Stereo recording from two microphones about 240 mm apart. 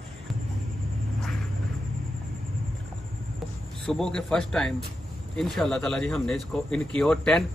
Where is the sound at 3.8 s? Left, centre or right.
Centre.